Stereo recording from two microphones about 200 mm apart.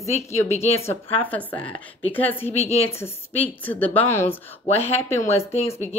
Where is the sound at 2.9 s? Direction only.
10° left (ahead or behind).